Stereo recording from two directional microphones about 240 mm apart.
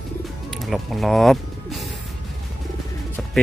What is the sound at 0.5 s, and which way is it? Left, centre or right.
Bird, centre.